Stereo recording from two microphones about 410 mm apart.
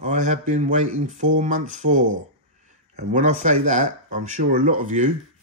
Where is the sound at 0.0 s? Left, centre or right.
Centre.